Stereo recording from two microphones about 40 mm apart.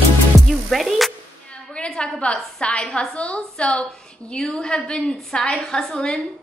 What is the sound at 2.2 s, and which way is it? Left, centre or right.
A woman's voice, left.